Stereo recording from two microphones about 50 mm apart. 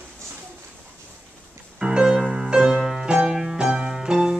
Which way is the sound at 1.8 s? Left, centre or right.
Centre.